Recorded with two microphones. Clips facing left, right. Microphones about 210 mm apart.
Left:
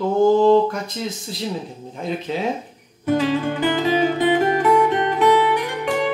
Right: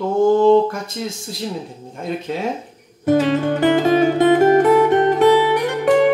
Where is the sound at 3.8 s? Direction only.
45° right (ahead or behind).